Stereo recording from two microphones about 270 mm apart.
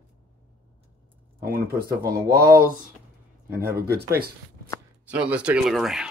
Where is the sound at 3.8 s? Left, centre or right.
Right.